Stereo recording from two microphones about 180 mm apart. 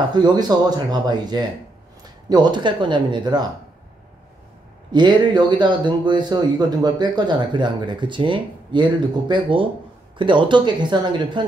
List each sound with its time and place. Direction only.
0.1 s speech: 25° right (ahead or behind)
4.9 s speech: 25° right (ahead or behind)